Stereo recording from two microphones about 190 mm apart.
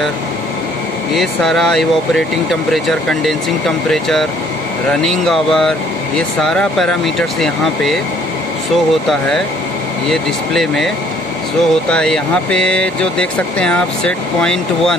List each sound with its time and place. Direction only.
1.1 s speech: centre (ahead or behind)
10.0 s speech: centre (ahead or behind)
11.9 s speech: 5° left (ahead or behind)